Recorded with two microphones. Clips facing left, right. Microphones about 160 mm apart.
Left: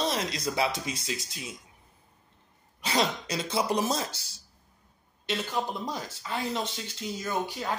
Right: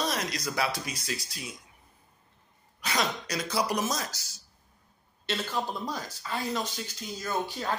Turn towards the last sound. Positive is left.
turn(degrees=15)  # may be behind; listen again after turning